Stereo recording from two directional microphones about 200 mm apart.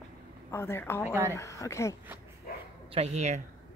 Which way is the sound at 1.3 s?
15° left (ahead or behind).